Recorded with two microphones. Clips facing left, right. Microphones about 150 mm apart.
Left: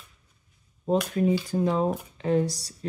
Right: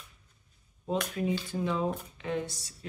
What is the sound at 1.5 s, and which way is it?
Speech, 40° left (ahead or behind).